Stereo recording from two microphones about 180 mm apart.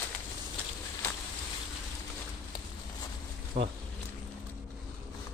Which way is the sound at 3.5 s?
35° right (ahead or behind).